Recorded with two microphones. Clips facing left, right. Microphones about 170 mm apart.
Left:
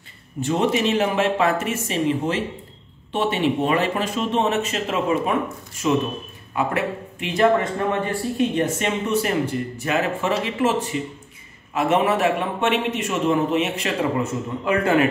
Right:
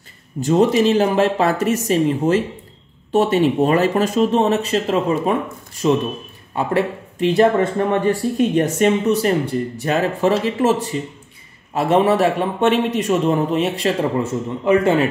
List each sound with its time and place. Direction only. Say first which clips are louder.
0.4 s a man's voice: right 6 dB; 35° right (ahead or behind)
8.5 s a man's voice: right 6 dB; 45° right (ahead or behind); by 15.0 s 25° right (ahead or behind)